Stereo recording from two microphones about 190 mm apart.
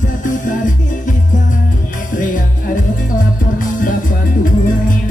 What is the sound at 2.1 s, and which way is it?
Music, 45° left (ahead or behind).